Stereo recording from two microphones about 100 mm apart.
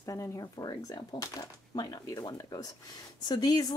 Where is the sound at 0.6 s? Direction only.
45° left (ahead or behind).